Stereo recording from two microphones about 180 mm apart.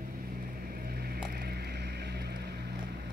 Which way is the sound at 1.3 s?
60° right (ahead or behind).